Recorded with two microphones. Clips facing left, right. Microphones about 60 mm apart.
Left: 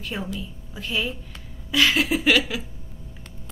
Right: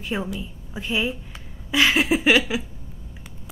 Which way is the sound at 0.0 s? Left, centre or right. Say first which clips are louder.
Right 4 dB; centre.